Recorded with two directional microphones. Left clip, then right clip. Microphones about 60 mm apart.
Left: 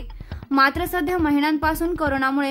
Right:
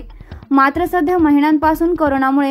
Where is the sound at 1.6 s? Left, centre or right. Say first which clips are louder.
Right 7 dB; right.